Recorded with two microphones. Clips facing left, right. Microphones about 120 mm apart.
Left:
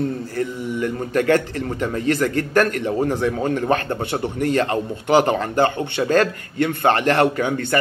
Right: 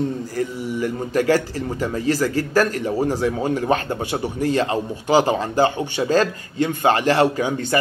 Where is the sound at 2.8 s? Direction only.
10° right (ahead or behind).